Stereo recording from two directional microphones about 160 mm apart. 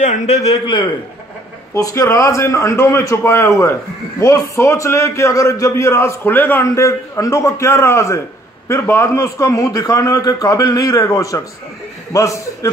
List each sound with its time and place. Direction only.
0.0 s a man's voice: 45° left (ahead or behind)
1.7 s a man's voice: 20° left (ahead or behind)